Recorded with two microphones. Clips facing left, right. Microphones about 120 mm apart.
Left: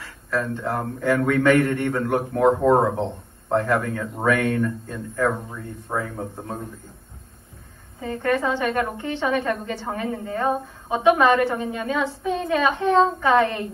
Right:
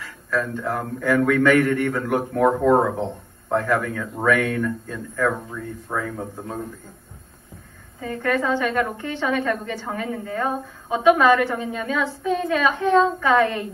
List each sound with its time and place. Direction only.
0.0 s a woman's voice: 25° left (ahead or behind)
8.0 s a woman's voice: 25° left (ahead or behind)